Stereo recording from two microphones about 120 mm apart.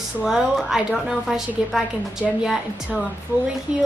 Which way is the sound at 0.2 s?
5° right (ahead or behind).